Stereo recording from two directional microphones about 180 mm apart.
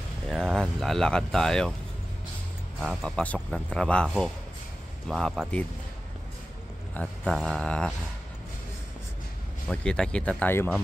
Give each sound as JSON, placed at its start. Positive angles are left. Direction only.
{"t": 0.3, "sound": "speech", "side_deg": 5}
{"t": 2.8, "sound": "speech", "side_deg": 0}
{"t": 6.9, "sound": "speech", "side_deg": 5}
{"t": 9.7, "sound": "speech", "side_deg": 5}